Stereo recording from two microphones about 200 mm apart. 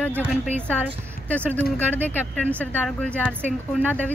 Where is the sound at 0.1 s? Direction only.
10° right (ahead or behind).